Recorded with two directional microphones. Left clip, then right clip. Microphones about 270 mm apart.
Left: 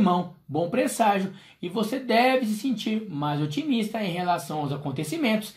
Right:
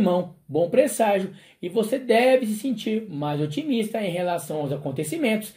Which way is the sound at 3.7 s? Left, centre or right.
Centre.